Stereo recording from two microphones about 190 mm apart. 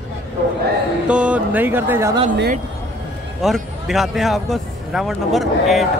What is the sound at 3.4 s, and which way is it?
Speech, centre (ahead or behind).